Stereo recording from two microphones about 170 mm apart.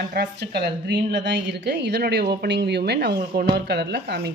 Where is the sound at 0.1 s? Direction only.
70° right (ahead or behind).